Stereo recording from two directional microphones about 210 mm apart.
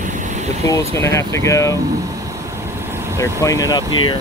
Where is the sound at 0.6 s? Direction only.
15° left (ahead or behind).